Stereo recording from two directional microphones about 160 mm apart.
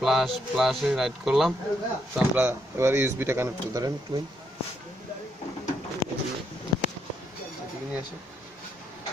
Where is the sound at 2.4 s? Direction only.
15° right (ahead or behind).